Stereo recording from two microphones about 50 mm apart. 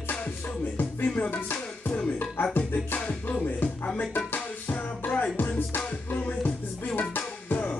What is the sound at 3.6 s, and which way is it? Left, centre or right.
Music, left.